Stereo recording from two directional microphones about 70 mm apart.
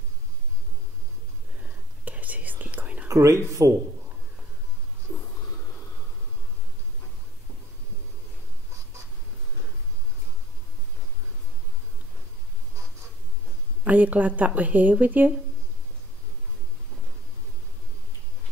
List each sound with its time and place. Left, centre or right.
2.0 s whispering: right
3.1 s speech: right
13.8 s speech: right